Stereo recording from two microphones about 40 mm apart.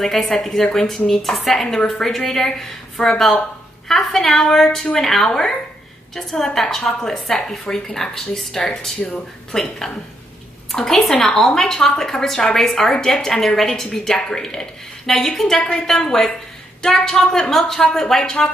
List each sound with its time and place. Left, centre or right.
0.0 s a woman's voice: centre
10.7 s a woman's voice: centre